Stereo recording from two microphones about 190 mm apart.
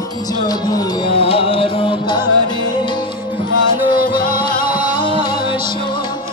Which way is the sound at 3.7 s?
25° left (ahead or behind).